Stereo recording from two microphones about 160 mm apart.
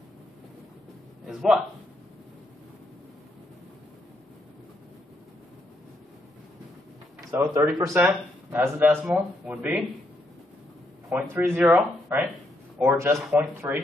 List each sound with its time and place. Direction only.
1.2 s a man's voice: centre (ahead or behind)
7.2 s speech: 15° right (ahead or behind)
11.1 s a man's voice: 10° right (ahead or behind)
13.1 s speech: centre (ahead or behind)
13.4 s speech: 15° right (ahead or behind)